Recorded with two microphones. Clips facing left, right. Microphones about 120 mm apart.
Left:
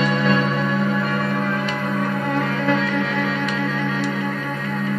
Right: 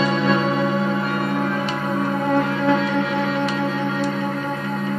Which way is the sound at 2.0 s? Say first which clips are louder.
Right 4 dB; 25° right (ahead or behind).